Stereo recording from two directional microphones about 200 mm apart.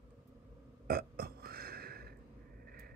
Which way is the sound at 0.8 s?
50° right (ahead or behind).